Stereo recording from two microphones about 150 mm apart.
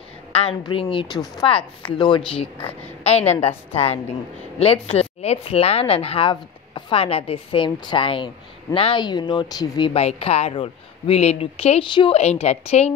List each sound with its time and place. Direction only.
0.3 s a woman's voice: 40° left (ahead or behind)
9.9 s speech: 40° left (ahead or behind)
12.2 s a woman's voice: 45° left (ahead or behind)